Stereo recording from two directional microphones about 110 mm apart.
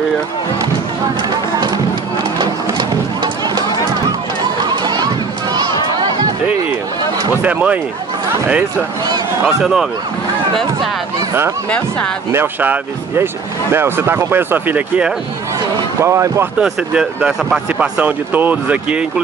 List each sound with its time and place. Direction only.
2.3 s music: 45° right (ahead or behind)
4.6 s a sound: 40° right (ahead or behind)
7.4 s speech: 15° right (ahead or behind)
9.6 s speech: 5° right (ahead or behind)
12.3 s speech: 20° right (ahead or behind)
16.0 s speech: 25° right (ahead or behind)
16.5 s speech: 5° right (ahead or behind)